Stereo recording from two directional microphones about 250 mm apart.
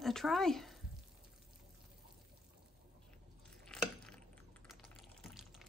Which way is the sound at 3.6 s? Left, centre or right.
Centre.